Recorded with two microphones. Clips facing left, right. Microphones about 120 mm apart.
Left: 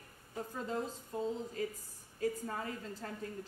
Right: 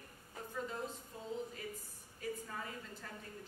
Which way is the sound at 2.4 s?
40° left (ahead or behind).